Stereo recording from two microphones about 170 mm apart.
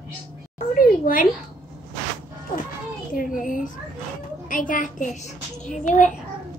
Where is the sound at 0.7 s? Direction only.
55° left (ahead or behind).